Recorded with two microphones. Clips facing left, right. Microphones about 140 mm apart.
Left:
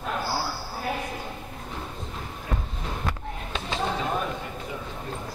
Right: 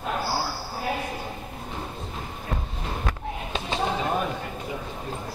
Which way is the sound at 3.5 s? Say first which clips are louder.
Right 1 dB; 20° right (ahead or behind).